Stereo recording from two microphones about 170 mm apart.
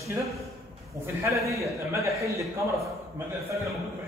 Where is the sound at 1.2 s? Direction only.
20° right (ahead or behind).